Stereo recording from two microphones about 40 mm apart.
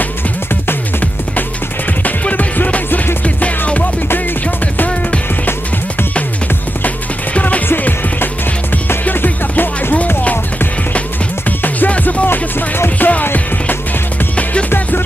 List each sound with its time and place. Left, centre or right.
2.0 s music: left
3.3 s music: left
7.3 s music: left
7.6 s music: left
11.4 s music: left
12.0 s music: left
12.3 s music: left
13.2 s music: left